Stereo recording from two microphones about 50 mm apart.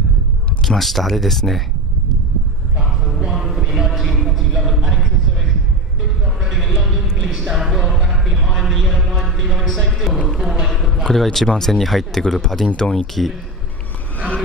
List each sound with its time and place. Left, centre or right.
0.7 s speech: centre
3.3 s music: centre
4.0 s music: centre
4.6 s a sound: centre
6.8 s a sound: centre
10.2 s speech: centre
11.1 s speech: centre